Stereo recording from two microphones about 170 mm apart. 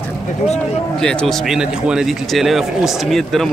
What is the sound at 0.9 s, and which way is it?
A man's voice, 5° left (ahead or behind).